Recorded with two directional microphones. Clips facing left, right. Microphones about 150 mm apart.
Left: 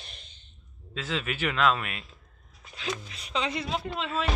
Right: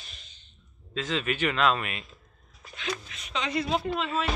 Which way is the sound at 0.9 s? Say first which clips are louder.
Right 3 dB; 10° left (ahead or behind).